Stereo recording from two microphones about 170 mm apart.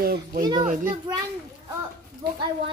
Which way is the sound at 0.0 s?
60° right (ahead or behind).